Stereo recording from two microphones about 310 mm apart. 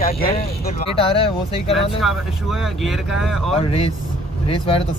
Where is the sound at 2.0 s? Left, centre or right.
Centre.